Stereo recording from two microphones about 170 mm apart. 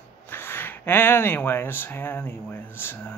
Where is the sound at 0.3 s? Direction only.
15° left (ahead or behind).